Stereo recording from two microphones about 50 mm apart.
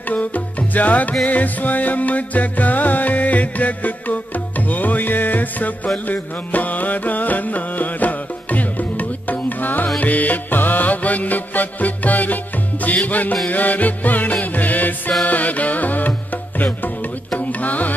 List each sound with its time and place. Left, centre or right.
0.1 s music: left